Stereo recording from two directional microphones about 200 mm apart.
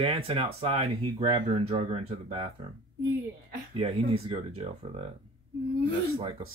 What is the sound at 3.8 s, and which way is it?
Speech, 30° right (ahead or behind).